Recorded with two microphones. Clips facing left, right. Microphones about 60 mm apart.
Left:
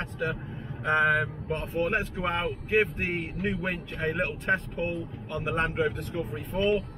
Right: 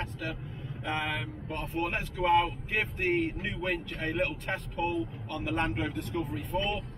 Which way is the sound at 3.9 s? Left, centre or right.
Centre.